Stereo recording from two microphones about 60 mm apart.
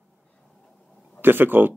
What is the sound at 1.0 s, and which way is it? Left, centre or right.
Speech, right.